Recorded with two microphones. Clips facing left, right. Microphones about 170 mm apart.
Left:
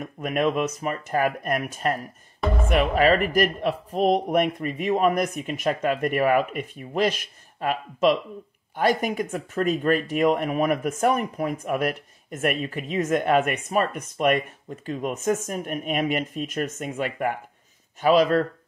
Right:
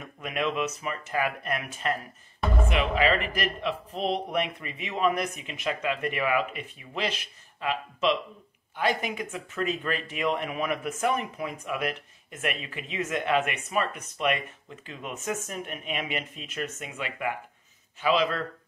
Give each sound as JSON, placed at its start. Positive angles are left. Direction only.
{"t": 0.0, "sound": "speech", "side_deg": 45}